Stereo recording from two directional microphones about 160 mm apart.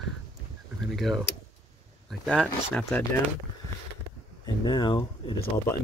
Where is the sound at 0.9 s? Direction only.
Centre (ahead or behind).